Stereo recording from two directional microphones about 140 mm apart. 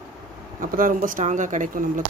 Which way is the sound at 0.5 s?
75° right (ahead or behind).